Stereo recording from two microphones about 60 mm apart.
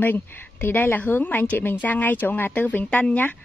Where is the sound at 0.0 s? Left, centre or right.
Left.